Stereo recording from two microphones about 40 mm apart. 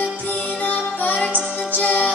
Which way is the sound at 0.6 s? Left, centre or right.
Left.